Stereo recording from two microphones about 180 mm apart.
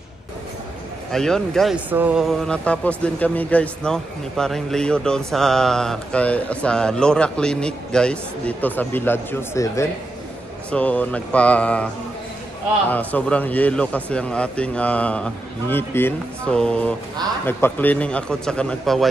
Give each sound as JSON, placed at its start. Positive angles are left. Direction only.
{"t": 1.1, "sound": "speech", "side_deg": 0}
{"t": 1.9, "sound": "speech", "side_deg": -10}
{"t": 12.9, "sound": "speech", "side_deg": 10}